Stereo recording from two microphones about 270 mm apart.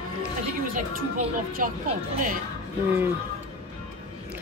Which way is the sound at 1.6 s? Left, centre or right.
Right.